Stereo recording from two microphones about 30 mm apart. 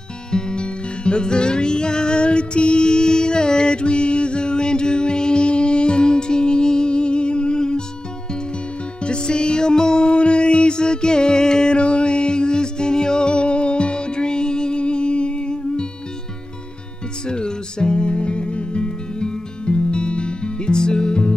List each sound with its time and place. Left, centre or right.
0.3 s music: left
9.0 s music: left
17.3 s music: left